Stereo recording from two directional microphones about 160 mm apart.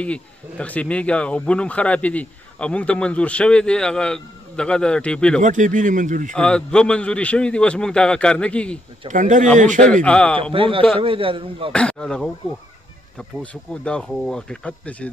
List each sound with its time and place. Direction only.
0.0 s speech: 10° left (ahead or behind)
5.4 s speech: 50° right (ahead or behind)
6.3 s speech: 5° left (ahead or behind)
9.1 s speech: 55° right (ahead or behind)
10.0 s speech: 5° left (ahead or behind)
10.5 s a man's voice: 35° right (ahead or behind)
11.7 s speech: 5° left (ahead or behind)
13.4 s speech: 5° left (ahead or behind)